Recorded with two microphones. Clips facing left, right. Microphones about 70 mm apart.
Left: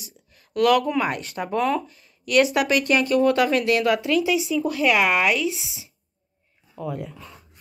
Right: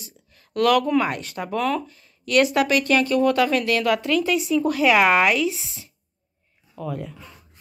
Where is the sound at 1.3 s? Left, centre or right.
Centre.